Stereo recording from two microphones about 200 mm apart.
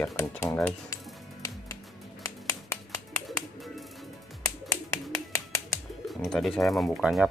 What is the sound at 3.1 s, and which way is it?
Bird, centre (ahead or behind).